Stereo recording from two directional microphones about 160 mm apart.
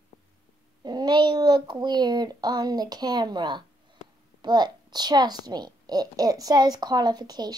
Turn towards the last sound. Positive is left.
turn(degrees=-25)  # may be behind; listen again after turning